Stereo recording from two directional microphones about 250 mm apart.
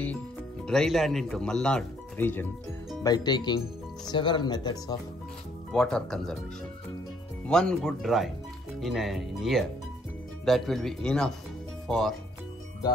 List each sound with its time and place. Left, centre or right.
0.7 s speech: centre
5.7 s speech: centre
7.4 s speech: centre